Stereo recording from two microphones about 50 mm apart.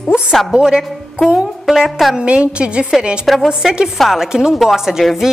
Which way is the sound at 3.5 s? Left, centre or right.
Centre.